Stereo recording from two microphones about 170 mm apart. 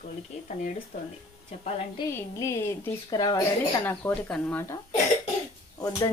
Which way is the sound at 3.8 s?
10° left (ahead or behind).